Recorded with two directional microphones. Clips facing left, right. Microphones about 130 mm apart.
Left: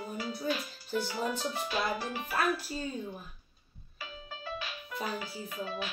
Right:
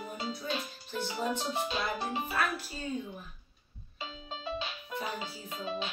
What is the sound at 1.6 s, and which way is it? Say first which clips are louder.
Music: left 1 dB; 25° right (ahead or behind).